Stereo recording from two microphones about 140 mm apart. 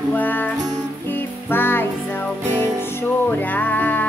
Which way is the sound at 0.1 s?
10° left (ahead or behind).